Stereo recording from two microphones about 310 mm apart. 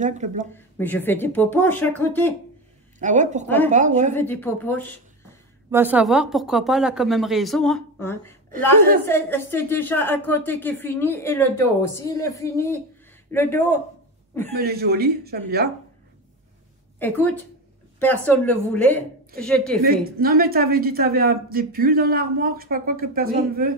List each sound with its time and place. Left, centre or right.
0.0 s speech: right
0.6 s speech: centre
3.0 s speech: right
3.4 s speech: centre
3.7 s speech: right
4.1 s speech: centre
5.7 s speech: centre
14.6 s speech: right
17.0 s speech: centre
20.2 s speech: right